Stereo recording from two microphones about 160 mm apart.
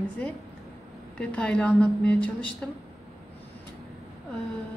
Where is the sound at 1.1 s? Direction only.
5° left (ahead or behind).